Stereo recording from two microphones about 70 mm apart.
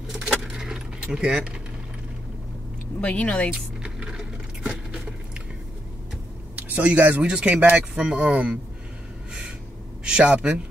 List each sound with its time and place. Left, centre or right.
0.5 s keys jangling: centre
3.0 s speech: centre
6.5 s speech: right
10.0 s speech: centre